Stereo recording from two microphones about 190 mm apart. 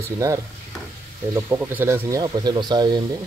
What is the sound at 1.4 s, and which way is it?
Speech, 10° right (ahead or behind).